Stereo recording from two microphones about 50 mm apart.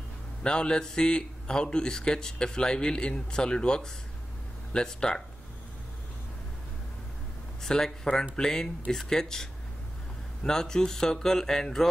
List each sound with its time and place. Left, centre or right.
0.4 s a man's voice: centre
7.6 s a man's voice: centre